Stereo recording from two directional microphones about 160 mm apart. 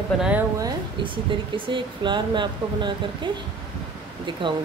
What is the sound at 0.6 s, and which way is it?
Speech, 30° right (ahead or behind).